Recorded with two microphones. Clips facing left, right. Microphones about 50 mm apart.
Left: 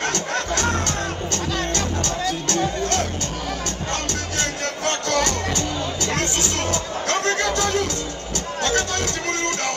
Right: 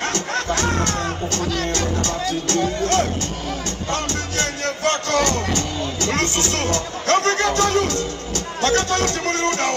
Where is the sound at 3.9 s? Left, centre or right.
Right.